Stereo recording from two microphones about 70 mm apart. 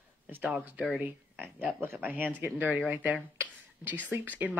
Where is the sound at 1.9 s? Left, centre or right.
Right.